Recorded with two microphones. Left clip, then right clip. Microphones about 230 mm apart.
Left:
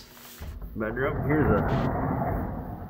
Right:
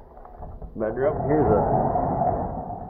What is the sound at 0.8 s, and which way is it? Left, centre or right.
Speech, centre.